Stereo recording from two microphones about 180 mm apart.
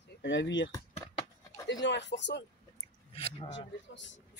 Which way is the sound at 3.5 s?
90° left.